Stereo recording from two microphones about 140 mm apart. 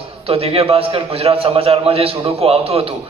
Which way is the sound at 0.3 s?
40° right (ahead or behind).